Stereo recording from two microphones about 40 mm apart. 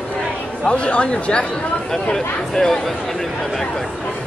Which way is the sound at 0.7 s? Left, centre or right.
Left.